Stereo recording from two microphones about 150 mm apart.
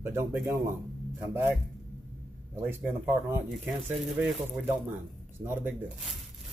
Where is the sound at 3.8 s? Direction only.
5° right (ahead or behind).